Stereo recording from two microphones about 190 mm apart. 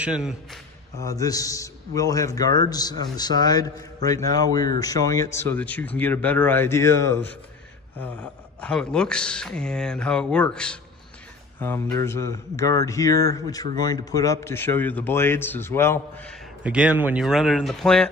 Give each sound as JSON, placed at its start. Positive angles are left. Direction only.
{"t": 0.0, "sound": "a man's voice", "side_deg": -5}
{"t": 0.9, "sound": "a man's voice", "side_deg": 20}
{"t": 16.6, "sound": "speech", "side_deg": -5}